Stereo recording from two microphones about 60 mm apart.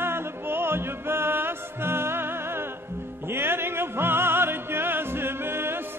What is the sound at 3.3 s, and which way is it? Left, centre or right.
Music, right.